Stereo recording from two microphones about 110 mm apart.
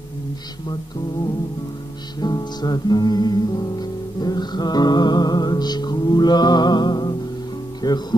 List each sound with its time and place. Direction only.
2.1 s music: 40° left (ahead or behind)